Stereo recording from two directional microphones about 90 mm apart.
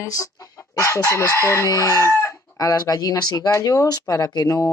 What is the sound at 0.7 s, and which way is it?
Chicken, 35° left (ahead or behind).